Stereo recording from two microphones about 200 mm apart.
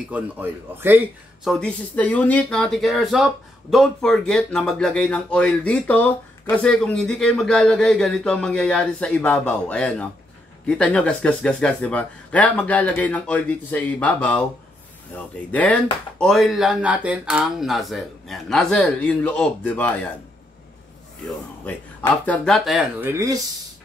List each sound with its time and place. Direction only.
0.1 s a man's voice: 10° right (ahead or behind)
1.5 s speech: 5° left (ahead or behind)
21.6 s speech: 10° left (ahead or behind)
23.0 s a man's voice: 15° right (ahead or behind)